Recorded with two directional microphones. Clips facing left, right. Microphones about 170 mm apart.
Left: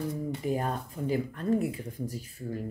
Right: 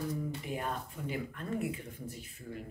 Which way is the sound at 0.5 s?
40° left (ahead or behind).